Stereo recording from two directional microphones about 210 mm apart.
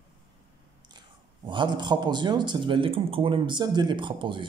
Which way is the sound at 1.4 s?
20° right (ahead or behind).